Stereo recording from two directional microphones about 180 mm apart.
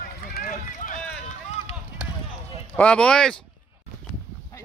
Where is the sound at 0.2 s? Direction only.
55° left (ahead or behind).